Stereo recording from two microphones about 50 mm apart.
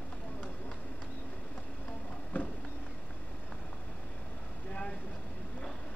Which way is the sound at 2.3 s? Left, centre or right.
Left.